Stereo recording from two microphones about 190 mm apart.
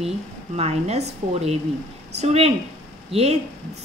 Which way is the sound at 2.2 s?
35° right (ahead or behind).